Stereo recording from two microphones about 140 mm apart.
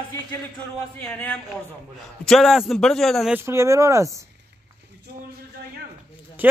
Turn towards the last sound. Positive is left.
turn(degrees=-15)  # may be behind; listen again after turning